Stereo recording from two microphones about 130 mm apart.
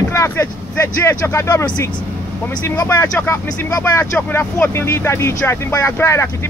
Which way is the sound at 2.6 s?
20° left (ahead or behind).